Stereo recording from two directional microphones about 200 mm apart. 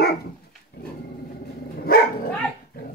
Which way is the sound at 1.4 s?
50° left (ahead or behind).